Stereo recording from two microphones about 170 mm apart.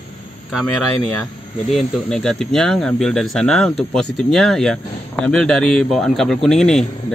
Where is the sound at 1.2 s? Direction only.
Centre (ahead or behind).